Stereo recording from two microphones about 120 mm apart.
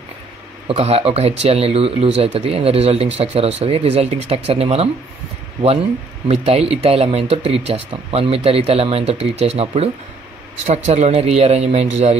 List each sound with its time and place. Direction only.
0.7 s speech: 55° right (ahead or behind)
6.2 s speech: 55° right (ahead or behind)